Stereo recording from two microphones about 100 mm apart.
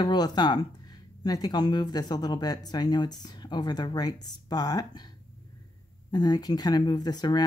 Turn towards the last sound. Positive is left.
turn(degrees=45)  # may be behind; listen again after turning